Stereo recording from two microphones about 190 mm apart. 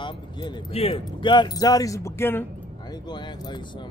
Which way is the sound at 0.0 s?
30° left (ahead or behind).